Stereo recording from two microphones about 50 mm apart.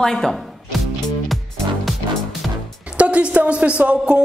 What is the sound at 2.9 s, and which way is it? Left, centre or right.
Speech, right.